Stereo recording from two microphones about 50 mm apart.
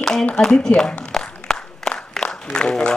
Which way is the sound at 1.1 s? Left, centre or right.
Centre.